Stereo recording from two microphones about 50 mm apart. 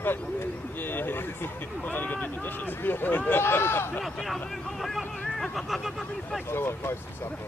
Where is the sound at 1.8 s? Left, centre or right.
Left.